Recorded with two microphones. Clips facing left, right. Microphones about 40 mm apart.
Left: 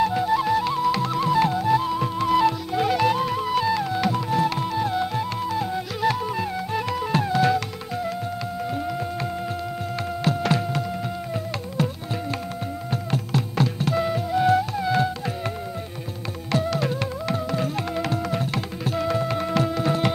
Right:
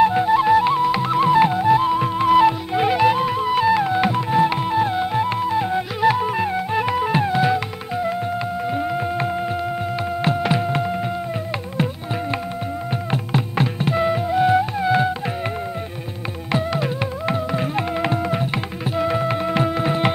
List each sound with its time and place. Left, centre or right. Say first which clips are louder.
0.0 s music: right 6 dB; right
10.2 s thunk: right 2 dB; centre
13.1 s music: right 3 dB; right
16.5 s music: right 2 dB; right